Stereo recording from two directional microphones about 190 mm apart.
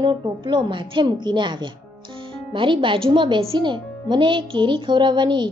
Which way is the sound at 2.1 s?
25° right (ahead or behind).